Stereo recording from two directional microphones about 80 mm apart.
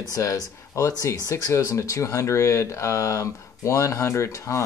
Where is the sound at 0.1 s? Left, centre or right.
Left.